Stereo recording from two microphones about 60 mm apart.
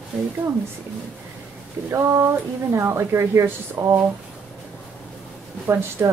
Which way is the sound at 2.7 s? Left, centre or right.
Right.